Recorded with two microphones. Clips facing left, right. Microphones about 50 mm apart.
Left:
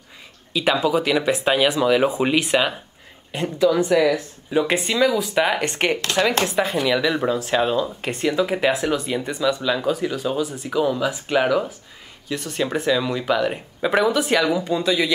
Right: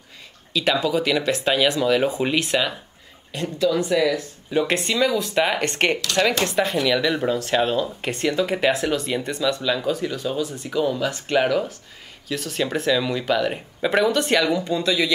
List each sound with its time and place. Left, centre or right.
0.5 s speech: centre
4.5 s speech: centre